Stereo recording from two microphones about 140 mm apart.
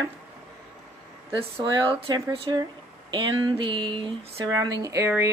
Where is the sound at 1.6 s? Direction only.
35° right (ahead or behind).